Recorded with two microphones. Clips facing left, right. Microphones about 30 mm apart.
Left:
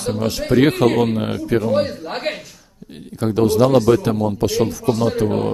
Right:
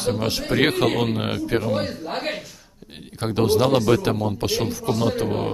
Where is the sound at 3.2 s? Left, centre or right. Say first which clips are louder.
Left 4 dB; right.